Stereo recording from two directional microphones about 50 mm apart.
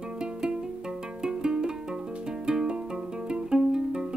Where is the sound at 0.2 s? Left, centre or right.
Centre.